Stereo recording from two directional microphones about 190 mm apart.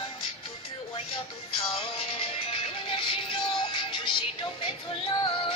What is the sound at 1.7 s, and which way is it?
Music, 30° left (ahead or behind).